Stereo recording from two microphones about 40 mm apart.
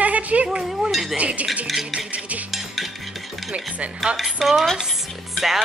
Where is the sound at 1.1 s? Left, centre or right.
Right.